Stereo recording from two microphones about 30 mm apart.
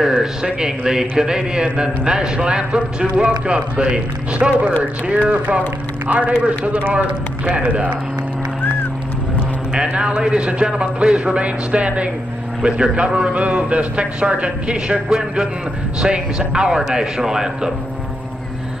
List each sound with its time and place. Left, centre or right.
0.6 s a man's voice: right
5.1 s a man's voice: right
9.8 s a man's voice: right; by 17.7 s centre